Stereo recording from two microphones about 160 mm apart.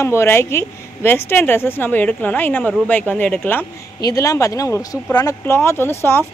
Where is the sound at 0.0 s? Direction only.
15° left (ahead or behind).